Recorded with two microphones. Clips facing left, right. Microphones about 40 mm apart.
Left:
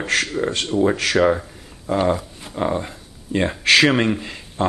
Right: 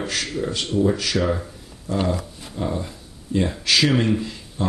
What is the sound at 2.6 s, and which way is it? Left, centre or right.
Speech, left.